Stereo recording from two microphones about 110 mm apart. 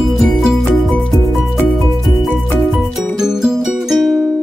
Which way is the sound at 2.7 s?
5° right (ahead or behind).